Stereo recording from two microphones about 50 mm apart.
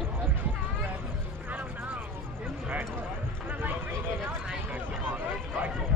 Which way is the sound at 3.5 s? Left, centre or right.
Right.